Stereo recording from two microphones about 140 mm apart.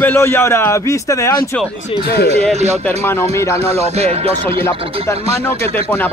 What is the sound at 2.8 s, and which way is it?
Speech, 15° left (ahead or behind).